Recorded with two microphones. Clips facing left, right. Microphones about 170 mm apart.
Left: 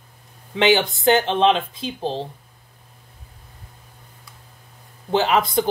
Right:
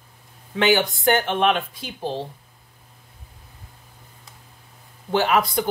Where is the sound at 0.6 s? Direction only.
20° left (ahead or behind).